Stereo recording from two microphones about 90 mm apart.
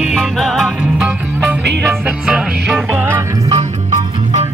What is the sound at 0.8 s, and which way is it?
Music, 10° right (ahead or behind).